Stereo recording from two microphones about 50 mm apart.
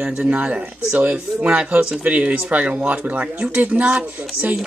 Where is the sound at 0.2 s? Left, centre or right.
Right.